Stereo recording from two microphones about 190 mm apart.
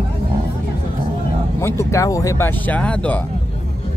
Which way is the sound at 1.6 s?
15° left (ahead or behind).